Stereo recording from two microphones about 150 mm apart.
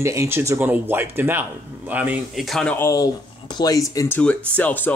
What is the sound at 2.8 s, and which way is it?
Speech, 20° left (ahead or behind).